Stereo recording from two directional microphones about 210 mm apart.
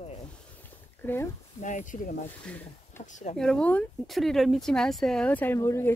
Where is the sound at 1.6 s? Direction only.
35° left (ahead or behind).